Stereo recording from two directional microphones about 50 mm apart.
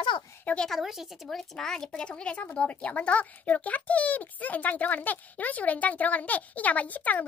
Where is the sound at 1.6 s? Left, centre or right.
Centre.